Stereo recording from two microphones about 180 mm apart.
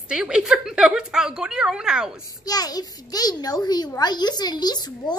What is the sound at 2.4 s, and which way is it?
A child's voice, 20° left (ahead or behind).